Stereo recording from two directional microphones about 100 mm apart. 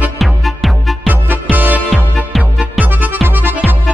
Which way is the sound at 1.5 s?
20° right (ahead or behind).